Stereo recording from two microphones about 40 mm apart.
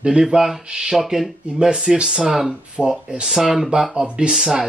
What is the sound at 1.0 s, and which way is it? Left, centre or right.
Speech, centre.